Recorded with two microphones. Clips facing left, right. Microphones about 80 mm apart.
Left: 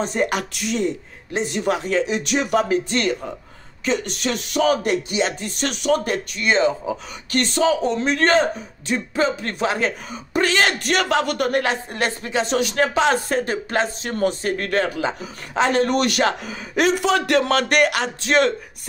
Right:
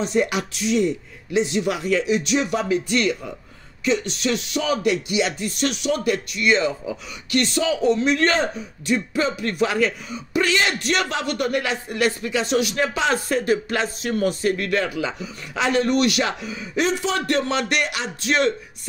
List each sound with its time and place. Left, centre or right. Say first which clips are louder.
0.0 s speech: even; left
0.7 s music: right 2 dB; left
2.9 s music: even; left